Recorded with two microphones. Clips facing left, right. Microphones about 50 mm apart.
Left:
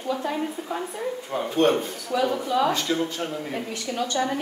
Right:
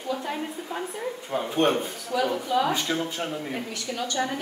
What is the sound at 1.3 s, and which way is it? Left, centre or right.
Speech, centre.